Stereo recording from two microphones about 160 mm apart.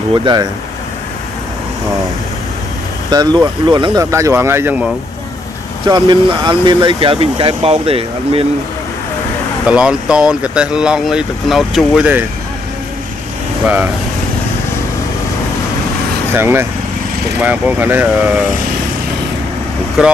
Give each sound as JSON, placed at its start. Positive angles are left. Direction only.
{"t": 0.1, "sound": "speech", "side_deg": -30}
{"t": 3.1, "sound": "speech", "side_deg": -25}
{"t": 5.9, "sound": "speech", "side_deg": -30}
{"t": 9.7, "sound": "speech", "side_deg": -5}
{"t": 16.3, "sound": "speech", "side_deg": -15}